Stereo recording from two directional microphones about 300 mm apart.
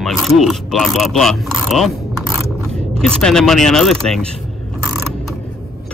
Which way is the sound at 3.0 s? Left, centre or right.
Centre.